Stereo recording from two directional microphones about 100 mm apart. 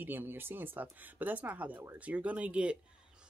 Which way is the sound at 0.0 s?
20° right (ahead or behind).